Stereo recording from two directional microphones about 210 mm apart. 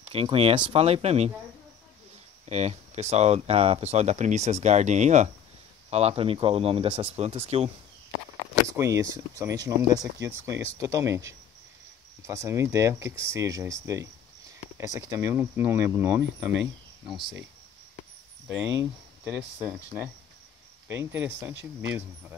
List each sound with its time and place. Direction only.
0.1 s speech: 25° right (ahead or behind)
2.4 s speech: 30° right (ahead or behind)
8.6 s speech: 15° right (ahead or behind)
18.8 s speech: 10° right (ahead or behind)